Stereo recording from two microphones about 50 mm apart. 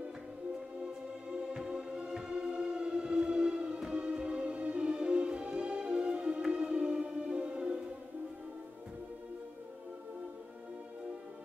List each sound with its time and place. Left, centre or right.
1.5 s music: centre